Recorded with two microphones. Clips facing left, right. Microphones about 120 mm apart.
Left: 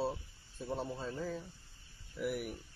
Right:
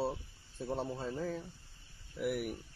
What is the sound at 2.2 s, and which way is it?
Speech, 60° right (ahead or behind).